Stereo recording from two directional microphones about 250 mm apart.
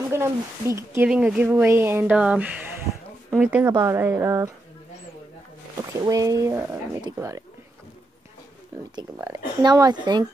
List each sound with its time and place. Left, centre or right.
0.1 s speech: centre
6.0 s speech: centre
8.9 s speech: centre